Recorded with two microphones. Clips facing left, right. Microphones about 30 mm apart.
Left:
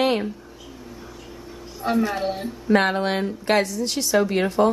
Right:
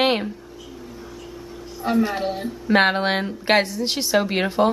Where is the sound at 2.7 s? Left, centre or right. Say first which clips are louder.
Right 2 dB; right.